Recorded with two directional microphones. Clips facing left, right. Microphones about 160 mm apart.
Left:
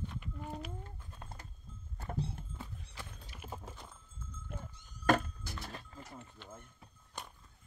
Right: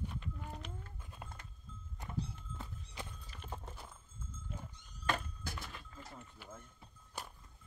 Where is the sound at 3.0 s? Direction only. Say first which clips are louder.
Right 3 dB; 20° right (ahead or behind).